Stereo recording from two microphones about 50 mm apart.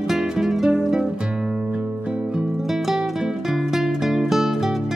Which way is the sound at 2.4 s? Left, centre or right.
Centre.